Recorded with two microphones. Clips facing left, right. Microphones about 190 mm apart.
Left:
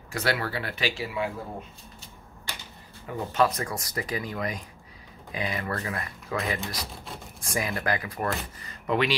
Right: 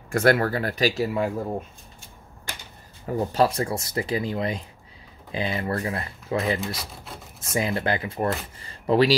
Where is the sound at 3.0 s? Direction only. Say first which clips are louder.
Right 3 dB; 35° right (ahead or behind).